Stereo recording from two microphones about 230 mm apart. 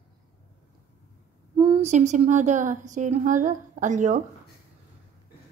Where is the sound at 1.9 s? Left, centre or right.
Right.